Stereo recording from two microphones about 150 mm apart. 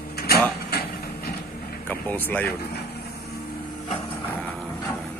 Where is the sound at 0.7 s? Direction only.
90° left.